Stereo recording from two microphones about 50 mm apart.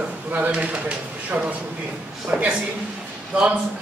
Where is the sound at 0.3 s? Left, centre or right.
Right.